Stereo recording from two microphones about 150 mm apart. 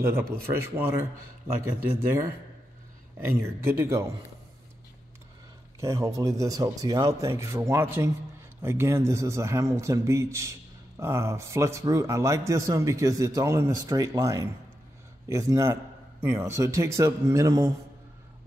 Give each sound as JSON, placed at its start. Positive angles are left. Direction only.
{"t": 0.0, "sound": "speech", "side_deg": -15}
{"t": 3.3, "sound": "speech", "side_deg": -15}
{"t": 5.8, "sound": "a man's voice", "side_deg": -20}